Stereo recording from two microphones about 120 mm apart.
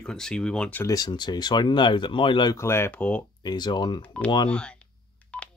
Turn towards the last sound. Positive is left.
turn(degrees=10)  # may be behind; listen again after turning